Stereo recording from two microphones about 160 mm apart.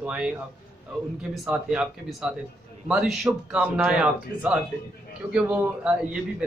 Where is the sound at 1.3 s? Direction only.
5° right (ahead or behind).